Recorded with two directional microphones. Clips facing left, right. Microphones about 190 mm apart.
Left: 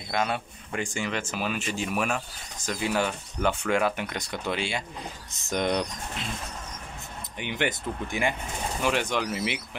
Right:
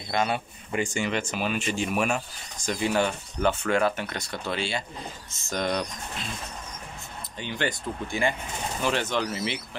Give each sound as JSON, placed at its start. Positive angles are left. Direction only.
{"t": 0.1, "sound": "speech", "side_deg": 0}
{"t": 7.3, "sound": "speech", "side_deg": 15}